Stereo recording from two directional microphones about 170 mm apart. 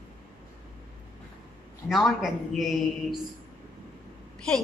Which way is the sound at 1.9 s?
Centre (ahead or behind).